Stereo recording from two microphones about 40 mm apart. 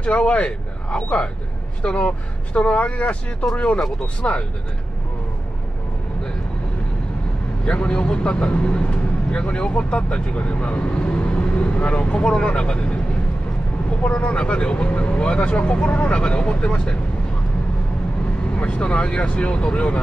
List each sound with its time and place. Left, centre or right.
0.0 s speech: left
2.5 s speech: left
4.2 s speech: left
7.6 s speech: left
14.0 s speech: left
18.6 s speech: left